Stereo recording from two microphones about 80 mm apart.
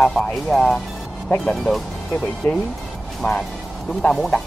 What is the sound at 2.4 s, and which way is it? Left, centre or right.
Speech, left.